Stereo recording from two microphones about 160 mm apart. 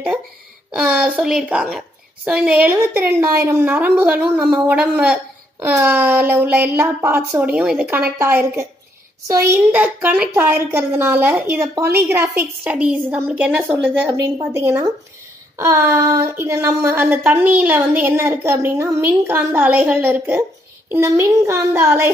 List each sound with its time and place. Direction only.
0.7 s a woman's voice: 5° right (ahead or behind)
8.2 s a woman's voice: 15° right (ahead or behind)